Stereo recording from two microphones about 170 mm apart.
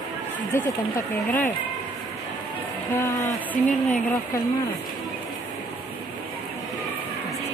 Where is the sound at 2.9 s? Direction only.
20° left (ahead or behind).